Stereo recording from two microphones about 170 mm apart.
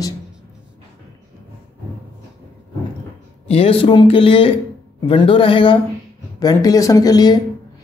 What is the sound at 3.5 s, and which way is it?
A woman's voice, 35° left (ahead or behind).